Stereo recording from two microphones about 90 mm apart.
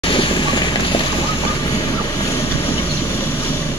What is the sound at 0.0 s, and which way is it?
Vehicle, 70° left (ahead or behind).